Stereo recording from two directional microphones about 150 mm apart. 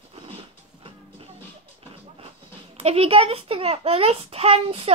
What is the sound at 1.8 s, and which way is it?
Speech, 40° right (ahead or behind).